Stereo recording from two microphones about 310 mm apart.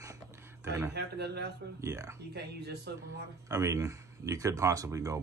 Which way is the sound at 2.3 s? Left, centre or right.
Right.